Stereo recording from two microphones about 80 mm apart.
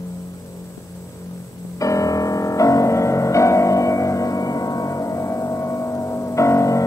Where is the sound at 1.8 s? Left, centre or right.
Left.